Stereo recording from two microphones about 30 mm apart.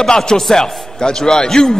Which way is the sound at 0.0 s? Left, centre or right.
Centre.